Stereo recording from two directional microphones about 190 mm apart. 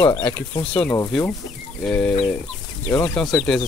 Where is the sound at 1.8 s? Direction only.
5° left (ahead or behind).